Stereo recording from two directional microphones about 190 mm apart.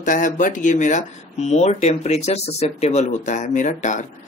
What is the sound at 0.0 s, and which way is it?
Speech, 45° left (ahead or behind).